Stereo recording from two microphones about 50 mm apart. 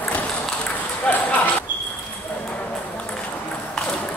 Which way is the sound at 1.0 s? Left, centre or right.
Left.